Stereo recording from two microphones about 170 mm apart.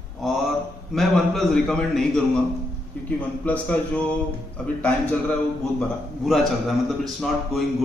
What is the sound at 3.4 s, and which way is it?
A man's voice, 10° left (ahead or behind).